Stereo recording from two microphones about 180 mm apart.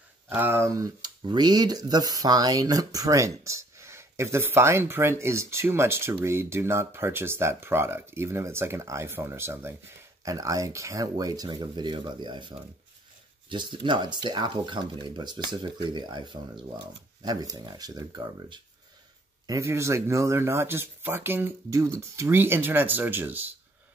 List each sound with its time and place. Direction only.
0.3 s speech: 10° right (ahead or behind)